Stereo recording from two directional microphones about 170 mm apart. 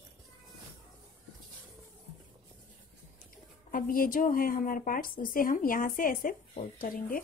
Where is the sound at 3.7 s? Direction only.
55° left (ahead or behind).